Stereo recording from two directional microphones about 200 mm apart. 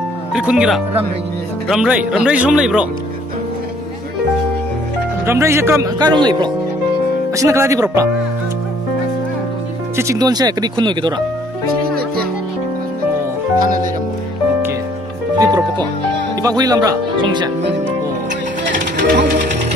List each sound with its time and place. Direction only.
0.3 s speech: 5° right (ahead or behind)
5.2 s speech: 15° right (ahead or behind)
9.9 s speech: 15° right (ahead or behind)
15.3 s music: 20° right (ahead or behind)
16.4 s speech: 20° right (ahead or behind)
18.6 s music: 60° right (ahead or behind)